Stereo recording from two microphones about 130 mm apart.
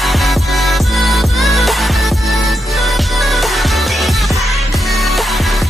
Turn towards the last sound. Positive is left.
turn(degrees=0)  # may be behind; listen again after turning